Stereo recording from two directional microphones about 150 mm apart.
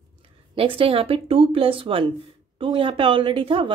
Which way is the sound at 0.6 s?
35° right (ahead or behind).